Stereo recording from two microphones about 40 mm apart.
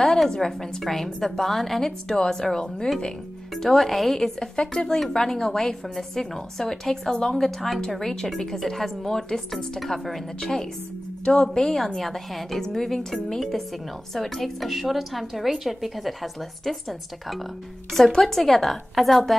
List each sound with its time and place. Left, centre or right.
0.0 s a woman's voice: centre
18.2 s a woman's voice: centre